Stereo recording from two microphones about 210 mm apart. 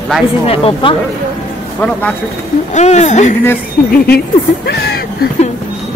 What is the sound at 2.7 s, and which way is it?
Speech, 35° left (ahead or behind).